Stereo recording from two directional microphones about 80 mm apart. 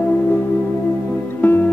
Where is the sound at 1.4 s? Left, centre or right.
Left.